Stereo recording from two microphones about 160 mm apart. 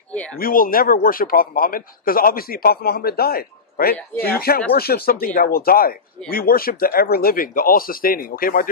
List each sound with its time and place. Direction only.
0.4 s speech: 65° left (ahead or behind)